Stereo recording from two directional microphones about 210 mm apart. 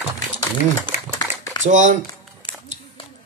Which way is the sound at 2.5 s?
25° left (ahead or behind).